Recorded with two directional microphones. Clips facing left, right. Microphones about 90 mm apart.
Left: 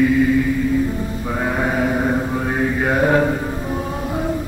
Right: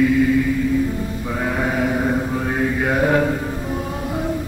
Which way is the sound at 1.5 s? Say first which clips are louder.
Left 1 dB; 30° left (ahead or behind).